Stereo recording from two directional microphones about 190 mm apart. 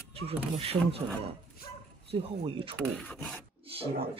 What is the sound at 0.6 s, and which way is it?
Speech, 30° right (ahead or behind).